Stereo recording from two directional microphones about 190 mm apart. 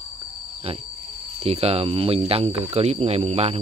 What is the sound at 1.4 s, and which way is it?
Speech, 30° right (ahead or behind).